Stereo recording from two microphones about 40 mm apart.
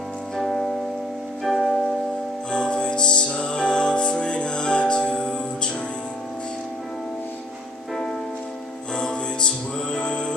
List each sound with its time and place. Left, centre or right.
0.4 s music: centre
2.5 s music: left
9.4 s music: left